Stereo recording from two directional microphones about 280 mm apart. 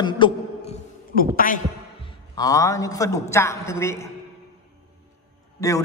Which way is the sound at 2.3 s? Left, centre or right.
Centre.